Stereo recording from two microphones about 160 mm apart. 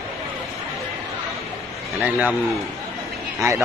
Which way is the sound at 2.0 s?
5° right (ahead or behind).